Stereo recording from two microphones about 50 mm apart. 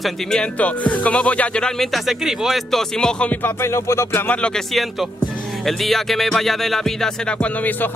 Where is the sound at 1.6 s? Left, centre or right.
Centre.